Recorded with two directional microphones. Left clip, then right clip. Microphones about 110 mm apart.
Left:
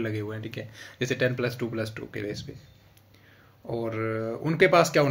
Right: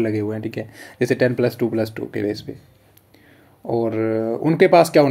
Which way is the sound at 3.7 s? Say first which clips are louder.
Right 10 dB; 35° right (ahead or behind).